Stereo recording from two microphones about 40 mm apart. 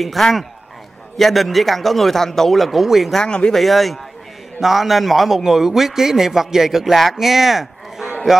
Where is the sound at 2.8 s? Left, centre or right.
Centre.